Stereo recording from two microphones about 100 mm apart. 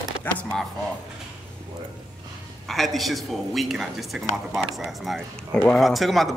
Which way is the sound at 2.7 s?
Centre (ahead or behind).